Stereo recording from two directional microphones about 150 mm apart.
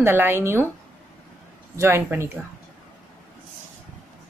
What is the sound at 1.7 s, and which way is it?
Speech, 15° right (ahead or behind).